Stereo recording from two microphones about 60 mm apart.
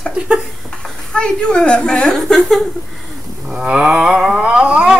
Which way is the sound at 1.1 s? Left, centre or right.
Centre.